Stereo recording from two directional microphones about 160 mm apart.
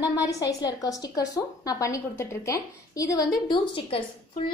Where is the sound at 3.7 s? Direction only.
35° left (ahead or behind).